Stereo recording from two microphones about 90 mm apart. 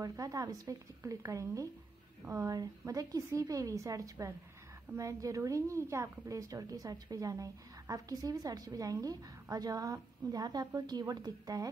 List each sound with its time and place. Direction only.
0.0 s a woman's voice: 40° right (ahead or behind)